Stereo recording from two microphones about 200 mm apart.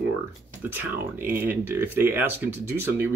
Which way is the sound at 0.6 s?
10° right (ahead or behind).